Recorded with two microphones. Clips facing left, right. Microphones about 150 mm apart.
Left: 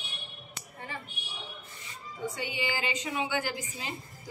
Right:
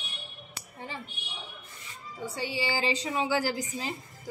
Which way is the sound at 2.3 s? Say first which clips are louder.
Right 5 dB; 35° right (ahead or behind).